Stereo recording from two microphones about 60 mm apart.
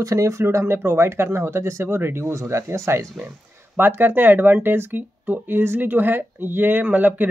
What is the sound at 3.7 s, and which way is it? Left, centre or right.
Speech, right.